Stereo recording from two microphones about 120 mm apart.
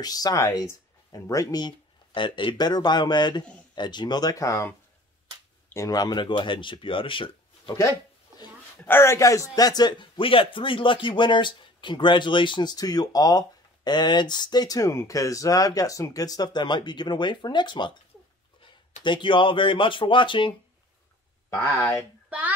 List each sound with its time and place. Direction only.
0.0 s speech: 30° left (ahead or behind)
8.8 s speech: 20° left (ahead or behind); by 20.5 s 45° left (ahead or behind)